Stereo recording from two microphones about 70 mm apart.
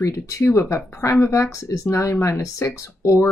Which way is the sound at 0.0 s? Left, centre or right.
Left.